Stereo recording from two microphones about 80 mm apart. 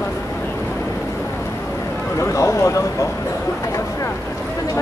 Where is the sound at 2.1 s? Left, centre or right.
Left.